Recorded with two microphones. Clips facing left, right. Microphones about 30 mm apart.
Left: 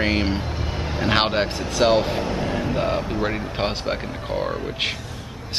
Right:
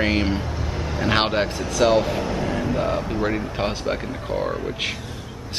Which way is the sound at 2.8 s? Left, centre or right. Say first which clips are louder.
Left 2 dB; left.